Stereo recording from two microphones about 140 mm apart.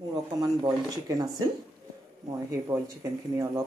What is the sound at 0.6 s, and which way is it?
Speech, 30° right (ahead or behind).